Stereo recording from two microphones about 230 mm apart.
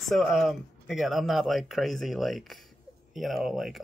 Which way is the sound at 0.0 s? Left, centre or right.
Centre.